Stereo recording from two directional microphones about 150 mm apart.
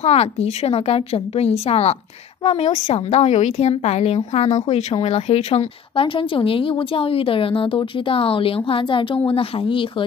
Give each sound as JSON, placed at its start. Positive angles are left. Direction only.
{"t": 0.0, "sound": "a woman's voice", "side_deg": 45}